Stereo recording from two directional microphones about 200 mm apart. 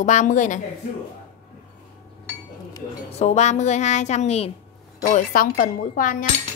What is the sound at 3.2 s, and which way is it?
A woman's voice, 35° left (ahead or behind).